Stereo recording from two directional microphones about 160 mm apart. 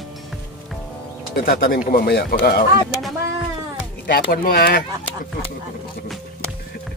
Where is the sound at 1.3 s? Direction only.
65° left (ahead or behind).